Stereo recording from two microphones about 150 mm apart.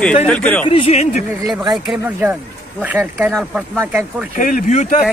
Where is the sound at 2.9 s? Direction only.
10° right (ahead or behind).